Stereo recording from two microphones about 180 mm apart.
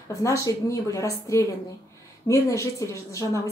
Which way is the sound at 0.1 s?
20° left (ahead or behind).